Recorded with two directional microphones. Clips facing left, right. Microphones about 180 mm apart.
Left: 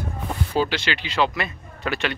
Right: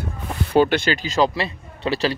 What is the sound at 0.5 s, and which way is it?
Speech, 55° right (ahead or behind).